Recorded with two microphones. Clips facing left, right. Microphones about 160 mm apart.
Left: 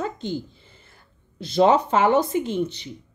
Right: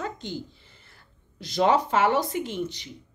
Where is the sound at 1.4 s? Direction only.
25° left (ahead or behind).